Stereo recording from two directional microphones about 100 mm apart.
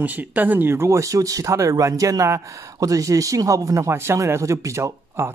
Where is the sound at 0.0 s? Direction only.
15° right (ahead or behind).